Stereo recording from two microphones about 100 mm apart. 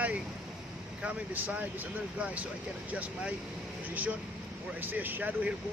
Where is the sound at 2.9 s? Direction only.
15° right (ahead or behind).